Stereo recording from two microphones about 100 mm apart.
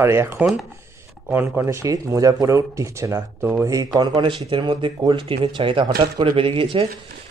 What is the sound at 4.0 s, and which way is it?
Speech, 50° right (ahead or behind).